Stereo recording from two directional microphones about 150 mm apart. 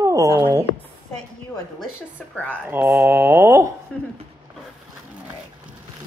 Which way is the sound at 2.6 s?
15° right (ahead or behind).